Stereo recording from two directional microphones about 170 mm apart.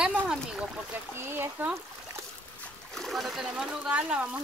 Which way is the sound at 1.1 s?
15° right (ahead or behind).